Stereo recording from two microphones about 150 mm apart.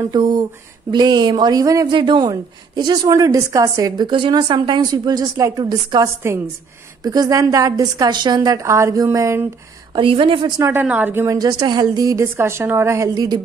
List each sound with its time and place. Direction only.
0.1 s a woman's voice: 25° right (ahead or behind)
9.9 s a woman's voice: 35° right (ahead or behind)
10.6 s speech: 15° right (ahead or behind)
11.4 s a woman's voice: 30° right (ahead or behind)